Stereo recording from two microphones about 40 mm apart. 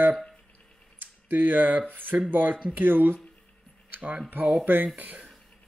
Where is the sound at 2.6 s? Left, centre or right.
Right.